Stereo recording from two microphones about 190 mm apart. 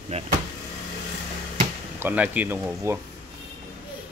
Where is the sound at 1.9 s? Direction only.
10° right (ahead or behind).